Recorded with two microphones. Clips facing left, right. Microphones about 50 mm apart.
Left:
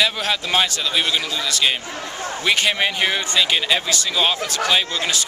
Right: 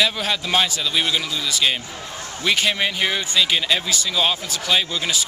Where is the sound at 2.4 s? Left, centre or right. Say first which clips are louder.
Left 1 dB; centre.